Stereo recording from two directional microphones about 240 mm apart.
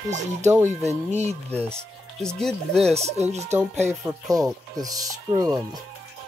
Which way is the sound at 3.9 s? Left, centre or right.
Centre.